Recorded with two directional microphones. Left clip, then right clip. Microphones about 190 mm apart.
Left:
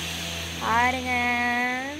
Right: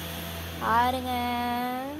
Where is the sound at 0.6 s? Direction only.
Centre (ahead or behind).